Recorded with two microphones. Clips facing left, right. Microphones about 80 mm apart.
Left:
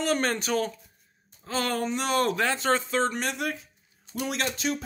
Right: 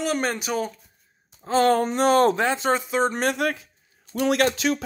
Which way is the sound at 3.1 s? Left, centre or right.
Right.